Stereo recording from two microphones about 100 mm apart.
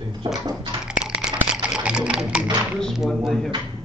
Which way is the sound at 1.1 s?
10° right (ahead or behind).